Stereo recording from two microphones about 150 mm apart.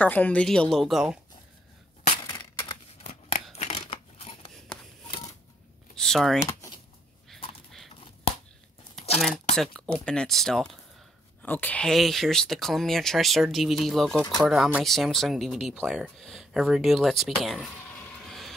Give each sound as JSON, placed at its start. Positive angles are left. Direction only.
{"t": 0.0, "sound": "speech", "side_deg": 10}
{"t": 3.5, "sound": "scissors", "side_deg": 45}
{"t": 5.9, "sound": "speech", "side_deg": 0}
{"t": 6.4, "sound": "a sound", "side_deg": 20}
{"t": 7.9, "sound": "a sound", "side_deg": 40}
{"t": 9.6, "sound": "speech", "side_deg": 5}
{"t": 17.9, "sound": "music", "side_deg": 5}